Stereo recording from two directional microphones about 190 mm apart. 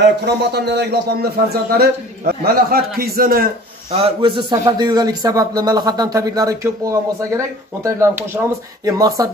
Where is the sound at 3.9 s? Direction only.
30° right (ahead or behind).